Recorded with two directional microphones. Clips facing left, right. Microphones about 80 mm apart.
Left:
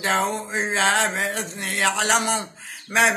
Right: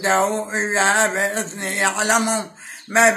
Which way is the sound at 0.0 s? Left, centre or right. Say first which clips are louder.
Right 4 dB; right.